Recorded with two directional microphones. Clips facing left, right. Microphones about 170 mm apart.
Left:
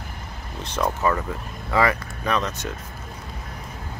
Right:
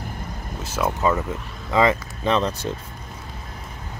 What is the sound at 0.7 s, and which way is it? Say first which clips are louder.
Speech: even; 5° right (ahead or behind).